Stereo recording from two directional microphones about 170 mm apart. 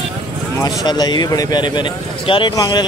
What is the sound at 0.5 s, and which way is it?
A man's voice, 25° left (ahead or behind).